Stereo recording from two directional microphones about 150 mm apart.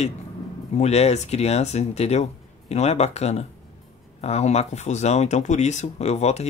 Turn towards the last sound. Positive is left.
turn(degrees=45)  # may be behind; listen again after turning